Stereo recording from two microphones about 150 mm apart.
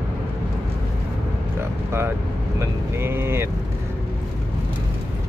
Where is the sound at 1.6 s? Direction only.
15° right (ahead or behind).